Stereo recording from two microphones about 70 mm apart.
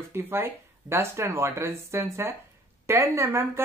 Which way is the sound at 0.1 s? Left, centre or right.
Right.